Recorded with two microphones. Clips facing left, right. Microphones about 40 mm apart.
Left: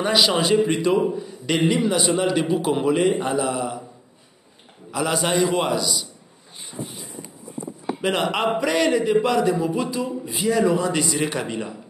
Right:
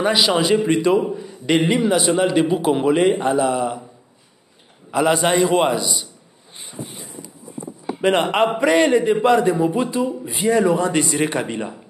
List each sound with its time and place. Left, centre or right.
0.0 s a man's voice: centre
2.0 s a man's voice: centre
4.9 s a man's voice: centre
8.2 s a man's voice: right
10.0 s a man's voice: right